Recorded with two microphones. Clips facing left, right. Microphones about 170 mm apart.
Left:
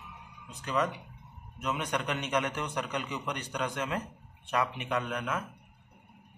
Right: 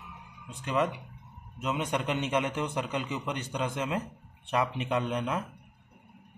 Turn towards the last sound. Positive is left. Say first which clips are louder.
# right 3 dB
turn(degrees=-30)  # may be behind; listen again after turning